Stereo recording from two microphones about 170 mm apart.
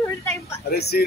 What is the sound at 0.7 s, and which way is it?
Speech, 70° left (ahead or behind).